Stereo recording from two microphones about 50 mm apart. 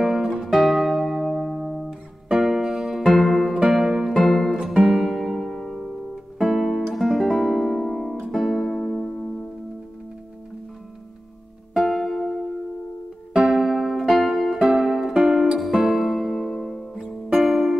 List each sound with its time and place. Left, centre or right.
0.0 s music: centre
2.2 s music: centre
6.5 s guitar: centre
6.9 s music: centre
11.7 s music: centre
13.5 s music: centre